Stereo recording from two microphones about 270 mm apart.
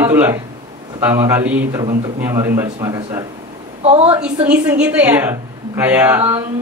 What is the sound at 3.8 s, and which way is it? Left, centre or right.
Speech, right.